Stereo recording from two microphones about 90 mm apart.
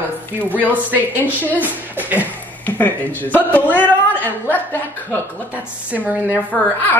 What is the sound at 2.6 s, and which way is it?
Speech, 20° left (ahead or behind).